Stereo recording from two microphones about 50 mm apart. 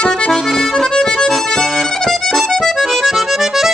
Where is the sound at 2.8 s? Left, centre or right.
Centre.